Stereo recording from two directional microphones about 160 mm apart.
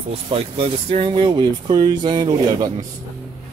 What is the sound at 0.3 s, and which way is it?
Speech, 35° right (ahead or behind).